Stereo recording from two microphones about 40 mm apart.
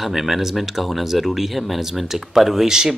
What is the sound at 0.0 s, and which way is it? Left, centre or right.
Speech, centre.